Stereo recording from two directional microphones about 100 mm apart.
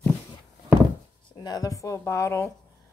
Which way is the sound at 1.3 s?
45° left (ahead or behind).